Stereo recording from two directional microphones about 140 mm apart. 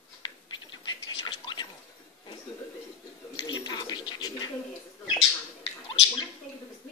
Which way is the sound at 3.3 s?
30° left (ahead or behind).